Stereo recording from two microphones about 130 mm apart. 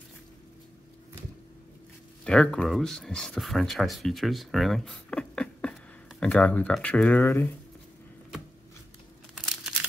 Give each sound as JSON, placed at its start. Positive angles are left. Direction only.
{"t": 2.2, "sound": "speech", "side_deg": 5}
{"t": 7.2, "sound": "speech", "side_deg": 20}